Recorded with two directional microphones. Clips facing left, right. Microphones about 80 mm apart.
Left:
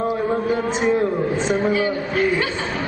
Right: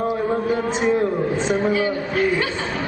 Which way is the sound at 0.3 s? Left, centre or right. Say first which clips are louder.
Even; centre.